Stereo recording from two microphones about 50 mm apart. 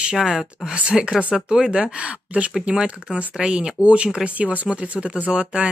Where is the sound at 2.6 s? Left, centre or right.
Centre.